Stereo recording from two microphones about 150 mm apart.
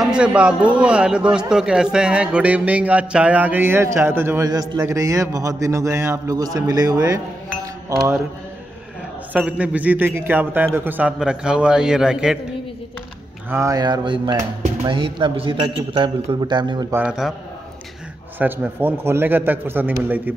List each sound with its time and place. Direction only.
0.0 s a man's voice: 5° right (ahead or behind); by 7.2 s 25° right (ahead or behind)
9.3 s a man's voice: 10° right (ahead or behind)
13.5 s a man's voice: 20° right (ahead or behind)
16.9 s a man's voice: 5° right (ahead or behind)
18.4 s a man's voice: 10° right (ahead or behind)